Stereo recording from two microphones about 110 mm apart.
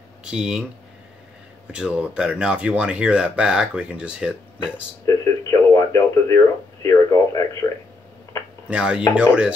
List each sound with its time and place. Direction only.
0.2 s speech: 5° right (ahead or behind)
1.7 s speech: 10° right (ahead or behind)
5.0 s radio: 30° left (ahead or behind)
8.6 s speech: 10° right (ahead or behind)